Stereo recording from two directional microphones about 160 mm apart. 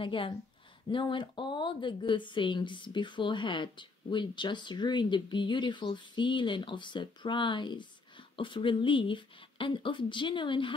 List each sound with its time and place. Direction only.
0.0 s speech: 30° left (ahead or behind)